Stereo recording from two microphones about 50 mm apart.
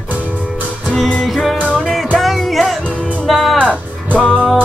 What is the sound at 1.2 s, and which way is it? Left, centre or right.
Music, centre.